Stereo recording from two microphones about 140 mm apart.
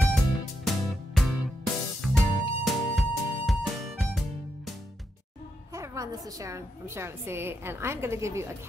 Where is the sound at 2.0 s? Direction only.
Centre (ahead or behind).